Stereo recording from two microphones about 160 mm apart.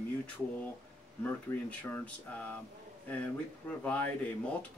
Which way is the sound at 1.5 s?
15° left (ahead or behind).